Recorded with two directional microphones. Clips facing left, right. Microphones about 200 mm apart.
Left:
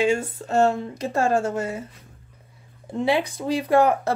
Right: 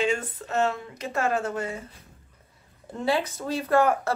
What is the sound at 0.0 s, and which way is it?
Speech, 30° left (ahead or behind).